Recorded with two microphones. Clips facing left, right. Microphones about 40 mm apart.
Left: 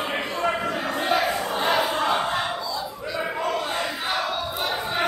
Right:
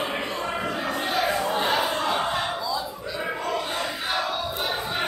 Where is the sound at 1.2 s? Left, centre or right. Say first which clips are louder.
Even; centre.